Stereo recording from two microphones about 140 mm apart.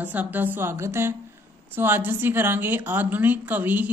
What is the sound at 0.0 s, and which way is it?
A woman's voice, 10° right (ahead or behind).